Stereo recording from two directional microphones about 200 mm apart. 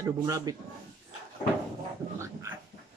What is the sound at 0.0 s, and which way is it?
Speech, 15° right (ahead or behind).